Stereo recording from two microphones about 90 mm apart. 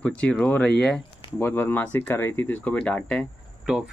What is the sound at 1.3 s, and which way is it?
Speech, 25° left (ahead or behind).